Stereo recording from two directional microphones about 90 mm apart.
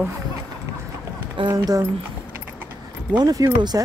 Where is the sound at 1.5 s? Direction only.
45° right (ahead or behind).